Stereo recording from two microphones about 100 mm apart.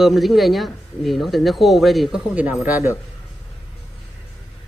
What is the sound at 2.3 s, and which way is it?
Speech, 15° right (ahead or behind).